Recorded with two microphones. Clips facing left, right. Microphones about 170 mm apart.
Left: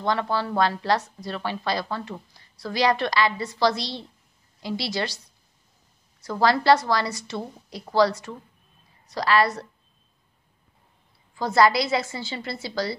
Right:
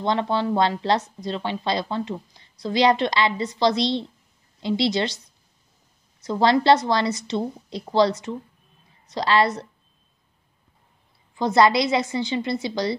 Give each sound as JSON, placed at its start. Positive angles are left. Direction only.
{"t": 0.0, "sound": "a woman's voice", "side_deg": -20}
{"t": 6.2, "sound": "a woman's voice", "side_deg": -20}
{"t": 11.3, "sound": "a woman's voice", "side_deg": -20}